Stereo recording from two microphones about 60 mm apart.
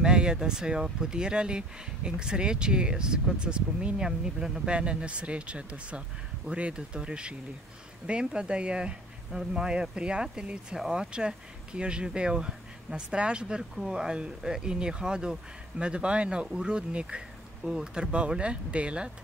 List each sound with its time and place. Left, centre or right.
0.0 s speech: centre